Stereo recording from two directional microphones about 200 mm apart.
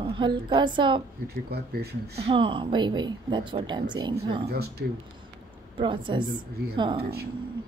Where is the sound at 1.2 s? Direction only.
55° right (ahead or behind).